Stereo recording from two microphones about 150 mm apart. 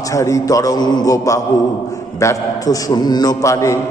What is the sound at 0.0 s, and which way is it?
A man's voice, 20° left (ahead or behind).